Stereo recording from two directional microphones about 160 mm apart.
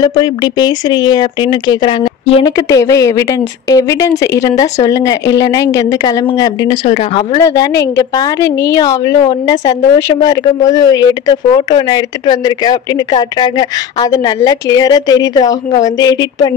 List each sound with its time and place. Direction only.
0.0 s speech: 25° left (ahead or behind)
2.5 s speech: 20° left (ahead or behind)
7.4 s speech: 20° left (ahead or behind)